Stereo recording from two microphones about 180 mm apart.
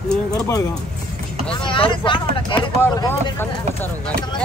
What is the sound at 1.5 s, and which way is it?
Vehicle, 25° left (ahead or behind).